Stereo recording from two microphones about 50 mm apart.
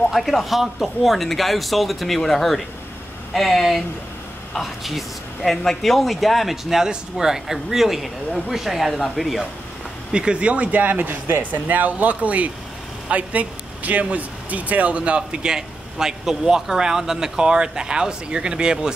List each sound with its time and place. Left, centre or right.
0.1 s speech: centre
10.1 s speech: right
11.6 s speech: right; by 18.9 s centre